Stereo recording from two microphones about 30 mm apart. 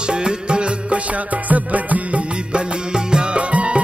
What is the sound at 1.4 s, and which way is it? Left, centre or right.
Music, right.